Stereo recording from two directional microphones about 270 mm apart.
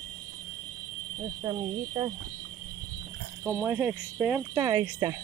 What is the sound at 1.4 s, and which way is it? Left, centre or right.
Speech, centre.